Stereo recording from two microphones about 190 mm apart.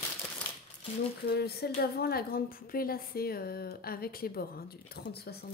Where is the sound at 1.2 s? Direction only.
55° left (ahead or behind).